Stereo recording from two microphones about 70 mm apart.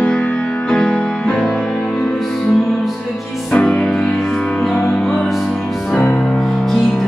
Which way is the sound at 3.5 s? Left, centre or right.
Centre.